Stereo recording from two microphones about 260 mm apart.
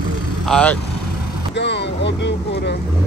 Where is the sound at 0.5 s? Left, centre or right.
Centre.